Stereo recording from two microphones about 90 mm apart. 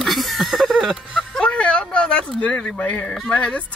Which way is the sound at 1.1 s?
15° left (ahead or behind).